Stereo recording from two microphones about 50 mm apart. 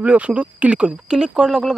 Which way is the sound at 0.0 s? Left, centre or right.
Right.